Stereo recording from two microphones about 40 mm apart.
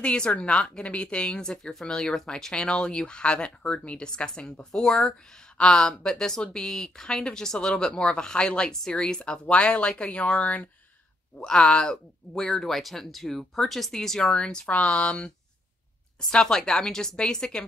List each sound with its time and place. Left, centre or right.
0.0 s speech: left
9.2 s speech: left
11.4 s speech: left
14.3 s speech: left
16.3 s speech: centre